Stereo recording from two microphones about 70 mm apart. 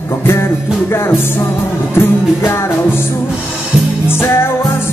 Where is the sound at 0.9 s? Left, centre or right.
Left.